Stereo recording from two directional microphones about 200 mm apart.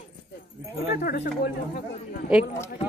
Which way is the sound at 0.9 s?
50° left (ahead or behind).